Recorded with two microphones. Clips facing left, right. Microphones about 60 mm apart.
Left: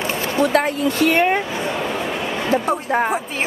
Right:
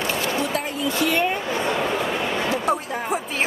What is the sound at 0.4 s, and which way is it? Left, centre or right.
A woman's voice, left.